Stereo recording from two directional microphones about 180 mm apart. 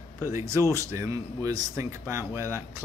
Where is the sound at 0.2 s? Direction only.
15° right (ahead or behind).